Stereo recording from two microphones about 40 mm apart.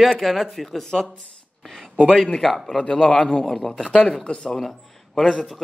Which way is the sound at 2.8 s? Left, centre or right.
Left.